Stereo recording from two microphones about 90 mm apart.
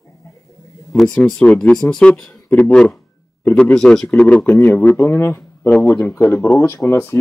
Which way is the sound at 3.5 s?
5° left (ahead or behind).